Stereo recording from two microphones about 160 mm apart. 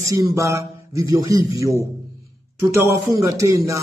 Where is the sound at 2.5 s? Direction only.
15° right (ahead or behind).